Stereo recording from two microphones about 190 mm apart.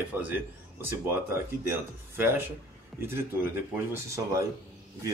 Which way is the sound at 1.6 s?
10° right (ahead or behind).